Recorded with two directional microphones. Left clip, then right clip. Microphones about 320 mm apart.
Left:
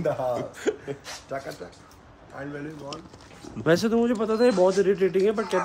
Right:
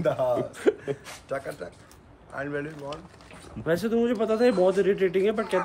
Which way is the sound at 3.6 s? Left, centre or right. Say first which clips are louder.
Left 4 dB; centre.